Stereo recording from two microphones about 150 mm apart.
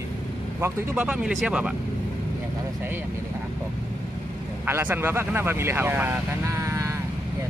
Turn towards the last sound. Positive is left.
turn(degrees=-20)  # may be behind; listen again after turning